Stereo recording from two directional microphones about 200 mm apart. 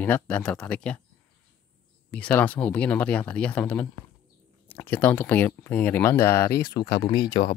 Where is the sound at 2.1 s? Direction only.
10° left (ahead or behind).